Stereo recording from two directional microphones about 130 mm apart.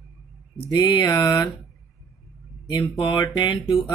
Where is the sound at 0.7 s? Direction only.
35° left (ahead or behind).